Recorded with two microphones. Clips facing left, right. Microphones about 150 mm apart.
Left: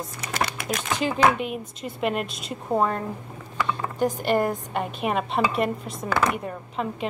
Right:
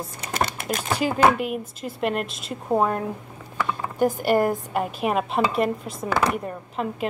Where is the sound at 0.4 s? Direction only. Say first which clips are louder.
Right 2 dB; 50° right (ahead or behind).